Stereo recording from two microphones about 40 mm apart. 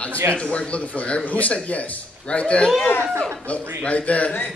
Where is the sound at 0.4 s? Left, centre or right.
Left.